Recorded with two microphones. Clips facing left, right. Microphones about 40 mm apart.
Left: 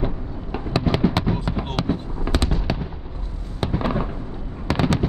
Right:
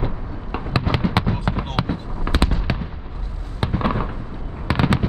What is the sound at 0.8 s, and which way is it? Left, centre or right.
Fireworks, centre.